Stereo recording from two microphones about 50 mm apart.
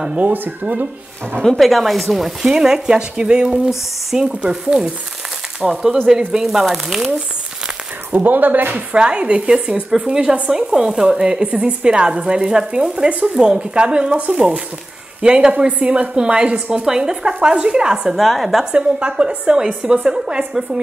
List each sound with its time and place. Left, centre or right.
0.1 s speech: right
1.4 s speech: centre
1.7 s speech: centre
8.1 s speech: right
8.9 s speech: centre
16.8 s speech: centre
18.1 s a woman's voice: centre
18.7 s speech: right